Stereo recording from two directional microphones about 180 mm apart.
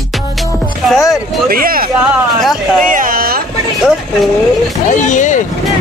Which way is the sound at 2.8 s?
50° right (ahead or behind).